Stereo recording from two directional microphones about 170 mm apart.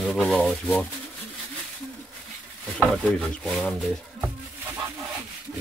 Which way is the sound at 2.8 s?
5° left (ahead or behind).